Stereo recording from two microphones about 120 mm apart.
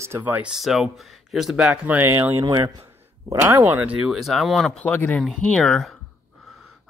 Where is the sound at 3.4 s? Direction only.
15° right (ahead or behind).